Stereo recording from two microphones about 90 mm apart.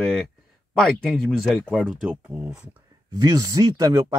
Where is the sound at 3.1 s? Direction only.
40° right (ahead or behind).